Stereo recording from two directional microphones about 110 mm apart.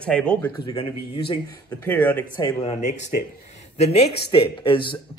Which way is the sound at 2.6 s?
85° left.